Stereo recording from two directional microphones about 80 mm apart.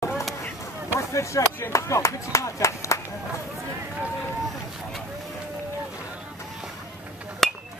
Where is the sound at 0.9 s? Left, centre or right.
Left.